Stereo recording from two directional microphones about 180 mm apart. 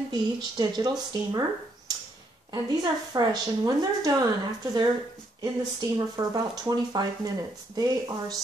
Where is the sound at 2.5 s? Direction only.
20° right (ahead or behind).